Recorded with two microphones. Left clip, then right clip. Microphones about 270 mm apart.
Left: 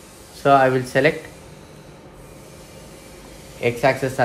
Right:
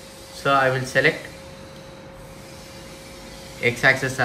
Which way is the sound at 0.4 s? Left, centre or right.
Centre.